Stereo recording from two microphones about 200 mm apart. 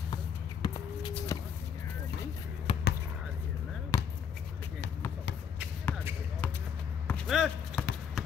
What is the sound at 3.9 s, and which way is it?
Basketball bounce, 15° left (ahead or behind).